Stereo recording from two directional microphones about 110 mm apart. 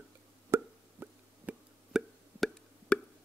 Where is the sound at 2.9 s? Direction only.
10° left (ahead or behind).